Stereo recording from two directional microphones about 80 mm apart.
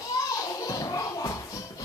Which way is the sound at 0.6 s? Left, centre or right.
Left.